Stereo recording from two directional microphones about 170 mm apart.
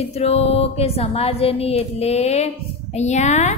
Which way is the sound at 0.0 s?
35° left (ahead or behind).